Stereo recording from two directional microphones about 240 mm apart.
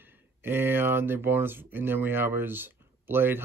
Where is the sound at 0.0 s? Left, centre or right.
Centre.